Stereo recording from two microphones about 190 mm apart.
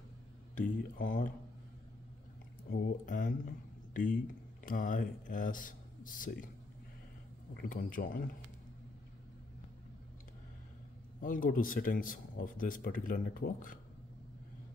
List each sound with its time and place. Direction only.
0.6 s speech: 45° left (ahead or behind)
2.7 s speech: 45° left (ahead or behind)
7.5 s speech: 45° left (ahead or behind)
11.2 s speech: 45° left (ahead or behind)